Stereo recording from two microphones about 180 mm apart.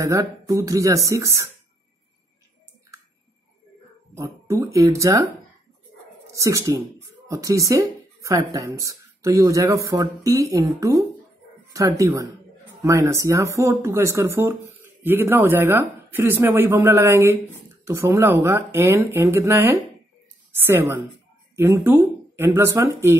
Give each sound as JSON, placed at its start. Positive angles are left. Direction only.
{"t": 0.0, "sound": "speech", "side_deg": -20}
{"t": 4.1, "sound": "speech", "side_deg": -15}
{"t": 6.3, "sound": "speech", "side_deg": -15}